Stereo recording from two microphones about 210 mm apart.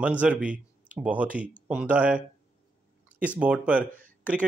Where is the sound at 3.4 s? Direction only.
5° right (ahead or behind).